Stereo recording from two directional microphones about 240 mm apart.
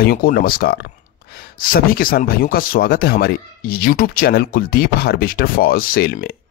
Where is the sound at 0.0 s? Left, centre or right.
Left.